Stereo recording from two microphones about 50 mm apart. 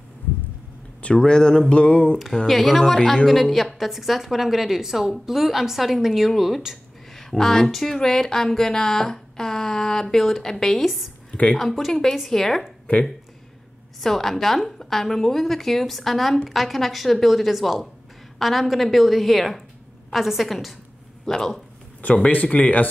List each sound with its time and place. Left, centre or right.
1.0 s speech: centre
2.4 s a woman's voice: centre
14.0 s a woman's voice: centre
22.0 s speech: left